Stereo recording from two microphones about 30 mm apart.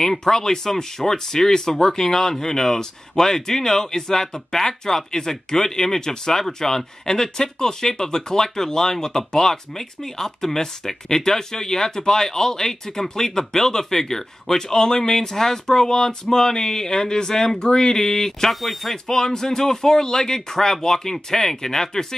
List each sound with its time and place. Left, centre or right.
0.0 s speech: centre
17.6 s speech: left
18.5 s speech: centre
19.0 s speech: left